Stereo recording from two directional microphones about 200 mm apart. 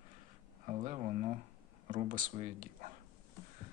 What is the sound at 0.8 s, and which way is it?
Speech, 35° right (ahead or behind).